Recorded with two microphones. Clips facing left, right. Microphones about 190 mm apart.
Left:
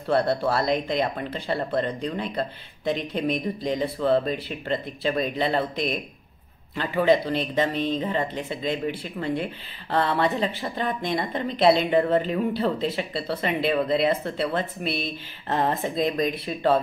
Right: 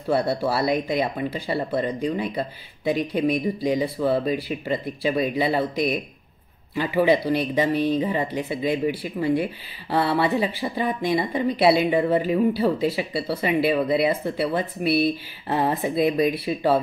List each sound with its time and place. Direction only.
0.0 s speech: 5° right (ahead or behind)